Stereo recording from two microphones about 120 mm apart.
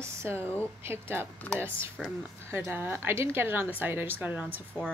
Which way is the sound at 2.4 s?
20° right (ahead or behind).